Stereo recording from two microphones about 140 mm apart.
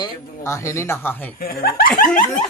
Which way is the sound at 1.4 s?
90° left.